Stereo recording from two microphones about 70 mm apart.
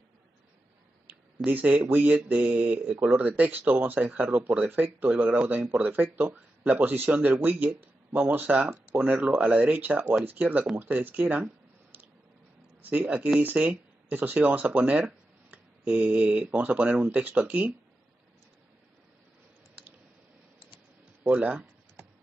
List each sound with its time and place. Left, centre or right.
1.0 s speech: right
21.3 s speech: centre